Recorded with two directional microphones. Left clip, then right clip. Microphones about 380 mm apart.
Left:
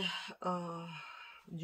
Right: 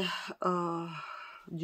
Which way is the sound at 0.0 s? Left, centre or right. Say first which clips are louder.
Right 5 dB; centre.